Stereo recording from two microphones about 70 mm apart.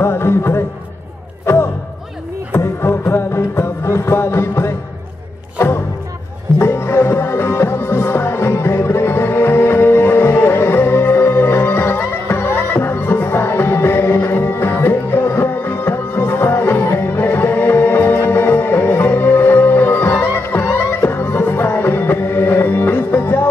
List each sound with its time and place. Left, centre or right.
0.0 s music: left
6.6 s music: left